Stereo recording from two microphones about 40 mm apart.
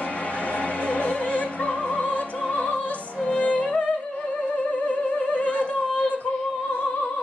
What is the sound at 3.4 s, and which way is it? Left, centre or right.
Music, left.